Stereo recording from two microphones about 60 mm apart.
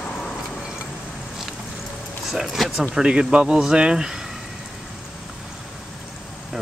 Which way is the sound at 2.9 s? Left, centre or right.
Centre.